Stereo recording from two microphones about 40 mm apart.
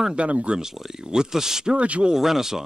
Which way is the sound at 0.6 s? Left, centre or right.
Centre.